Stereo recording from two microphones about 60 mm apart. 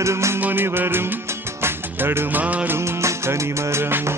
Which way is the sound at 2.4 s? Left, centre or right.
Right.